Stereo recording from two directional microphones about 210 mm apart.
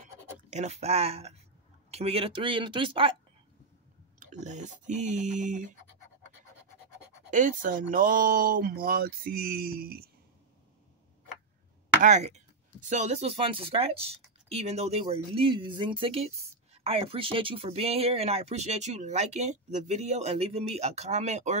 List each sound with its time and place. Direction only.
0.5 s speech: 30° right (ahead or behind)
4.2 s speech: 35° right (ahead or behind)
7.2 s speech: 40° right (ahead or behind)
12.0 s speech: 35° right (ahead or behind)